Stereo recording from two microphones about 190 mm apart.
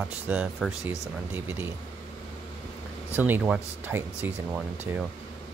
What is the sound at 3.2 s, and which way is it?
Speech, 10° right (ahead or behind).